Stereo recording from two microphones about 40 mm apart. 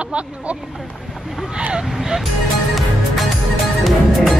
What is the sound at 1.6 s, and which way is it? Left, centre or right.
Speech, right.